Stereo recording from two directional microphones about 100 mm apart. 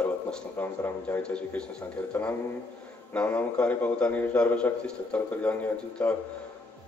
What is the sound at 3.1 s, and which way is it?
A man's voice, 15° left (ahead or behind).